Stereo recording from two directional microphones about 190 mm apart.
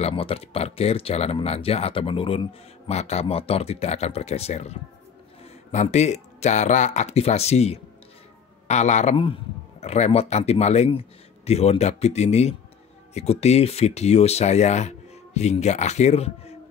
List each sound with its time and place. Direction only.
0.0 s a man's voice: 30° left (ahead or behind)